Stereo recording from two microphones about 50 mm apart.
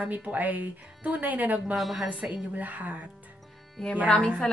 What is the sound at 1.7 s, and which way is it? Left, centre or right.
Speech, centre.